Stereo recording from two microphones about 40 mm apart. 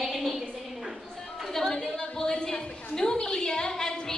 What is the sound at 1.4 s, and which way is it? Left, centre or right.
A woman's voice, centre.